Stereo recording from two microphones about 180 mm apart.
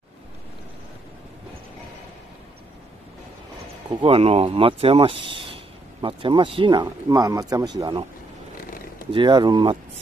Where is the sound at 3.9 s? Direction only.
30° right (ahead or behind).